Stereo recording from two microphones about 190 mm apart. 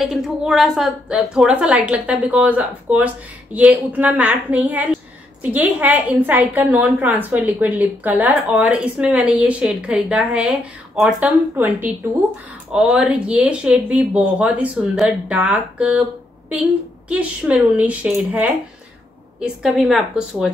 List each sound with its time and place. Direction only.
0.0 s a woman's voice: centre (ahead or behind)